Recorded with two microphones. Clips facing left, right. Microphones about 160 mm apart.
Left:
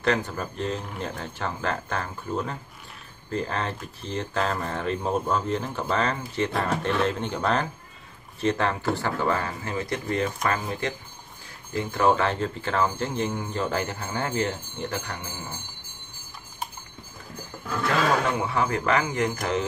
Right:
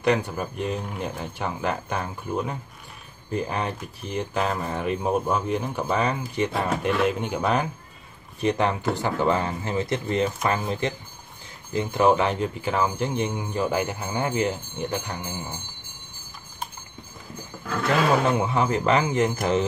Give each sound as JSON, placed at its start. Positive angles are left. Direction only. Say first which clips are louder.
{"t": 0.0, "sound": "speech", "louder": "right 2 dB", "side_deg": -15}
{"t": 18.2, "sound": "speech", "louder": "right 3 dB", "side_deg": -20}